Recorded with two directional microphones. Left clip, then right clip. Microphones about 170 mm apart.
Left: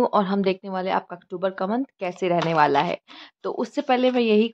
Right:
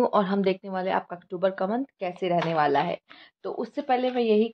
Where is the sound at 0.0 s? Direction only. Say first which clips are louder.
Left 2 dB; 20° left (ahead or behind).